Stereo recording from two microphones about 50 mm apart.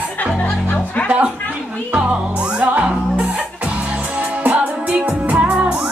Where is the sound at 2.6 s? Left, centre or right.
Right.